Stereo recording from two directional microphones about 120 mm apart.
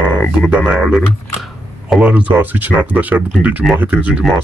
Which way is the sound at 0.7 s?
5° right (ahead or behind).